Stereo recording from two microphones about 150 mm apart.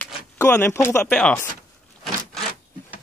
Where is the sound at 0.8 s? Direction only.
15° left (ahead or behind).